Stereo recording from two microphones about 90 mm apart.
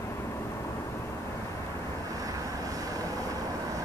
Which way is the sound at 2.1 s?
40° right (ahead or behind).